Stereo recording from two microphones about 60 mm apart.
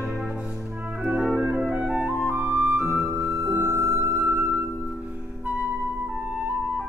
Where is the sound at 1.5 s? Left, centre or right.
Right.